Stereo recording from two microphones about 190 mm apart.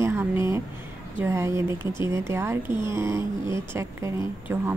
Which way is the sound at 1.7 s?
25° left (ahead or behind).